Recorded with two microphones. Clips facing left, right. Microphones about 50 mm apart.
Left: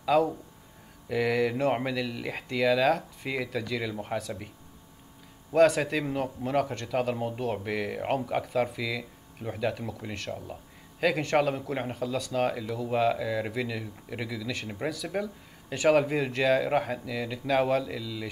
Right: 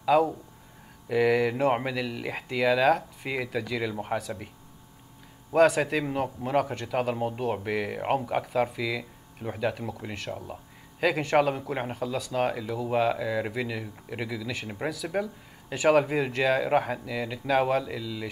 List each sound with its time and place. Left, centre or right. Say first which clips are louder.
0.0 s a man's voice: right 2 dB; centre
5.5 s a man's voice: right 1 dB; centre
10.3 s a man's voice: right 1 dB; centre
11.0 s a man's voice: right 2 dB; centre